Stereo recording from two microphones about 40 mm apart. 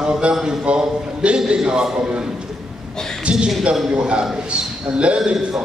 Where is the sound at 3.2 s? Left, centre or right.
Right.